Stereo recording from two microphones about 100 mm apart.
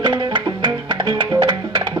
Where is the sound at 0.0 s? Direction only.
50° right (ahead or behind).